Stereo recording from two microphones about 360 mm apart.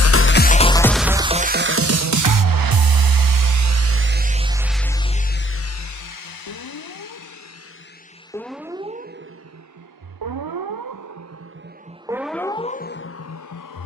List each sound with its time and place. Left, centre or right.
0.0 s music: left
8.3 s music: centre; by 9.2 s right
10.2 s music: right
12.1 s music: centre; by 13.8 s left